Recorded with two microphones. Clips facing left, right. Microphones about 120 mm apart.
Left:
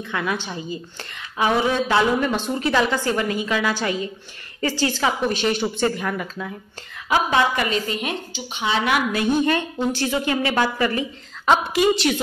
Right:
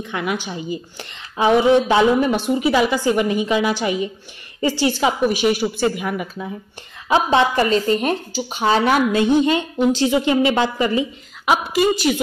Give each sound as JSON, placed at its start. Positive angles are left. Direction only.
{"t": 0.0, "sound": "a woman's voice", "side_deg": -20}
{"t": 7.1, "sound": "speech", "side_deg": -25}
{"t": 9.1, "sound": "a woman's voice", "side_deg": -20}
{"t": 11.5, "sound": "a woman's voice", "side_deg": 0}